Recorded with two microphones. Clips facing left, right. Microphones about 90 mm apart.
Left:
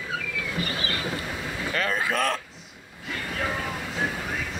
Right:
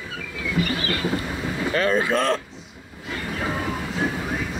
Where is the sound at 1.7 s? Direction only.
Centre (ahead or behind).